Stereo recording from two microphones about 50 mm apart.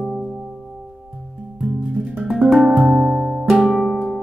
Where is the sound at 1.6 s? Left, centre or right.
Centre.